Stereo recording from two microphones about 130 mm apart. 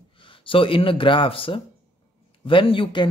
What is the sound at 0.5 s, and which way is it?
Speech, 45° left (ahead or behind).